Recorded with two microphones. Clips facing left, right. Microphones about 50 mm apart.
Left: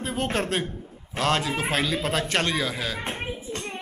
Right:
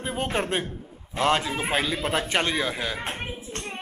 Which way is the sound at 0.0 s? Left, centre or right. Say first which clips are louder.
Even; centre.